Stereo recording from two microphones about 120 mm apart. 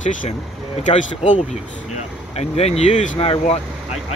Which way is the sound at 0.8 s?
90° left.